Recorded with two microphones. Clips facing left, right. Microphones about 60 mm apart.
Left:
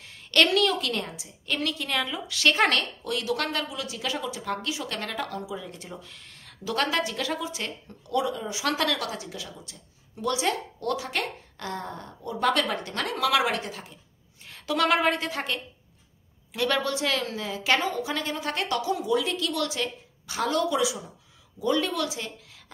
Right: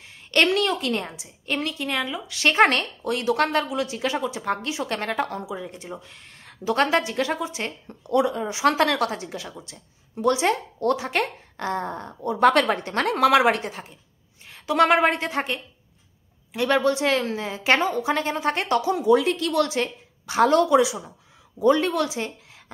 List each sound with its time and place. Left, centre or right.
0.0 s a sound: centre
0.4 s a woman's voice: right; by 2.3 s centre
2.3 s a woman's voice: right